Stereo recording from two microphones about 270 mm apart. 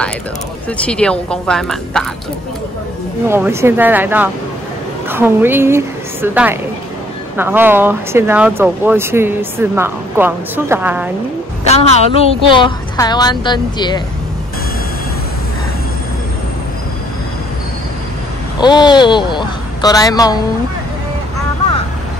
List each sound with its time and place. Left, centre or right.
0.7 s speech: centre
3.3 s speech: centre
11.6 s a woman's voice: left
18.6 s a woman's voice: centre